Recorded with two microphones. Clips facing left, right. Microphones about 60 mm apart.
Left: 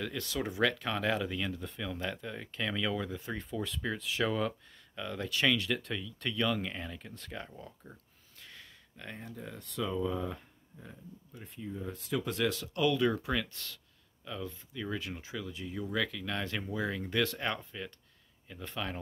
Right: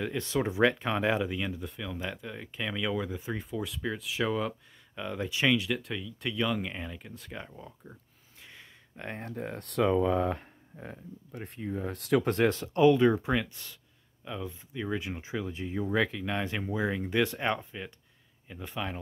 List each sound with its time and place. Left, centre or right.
0.0 s speech: right; by 4.6 s centre
4.9 s speech: centre
5.6 s speech: centre
8.4 s a sound: right
8.9 s speech: right
9.2 s speech: right
12.3 s speech: right; by 18.9 s centre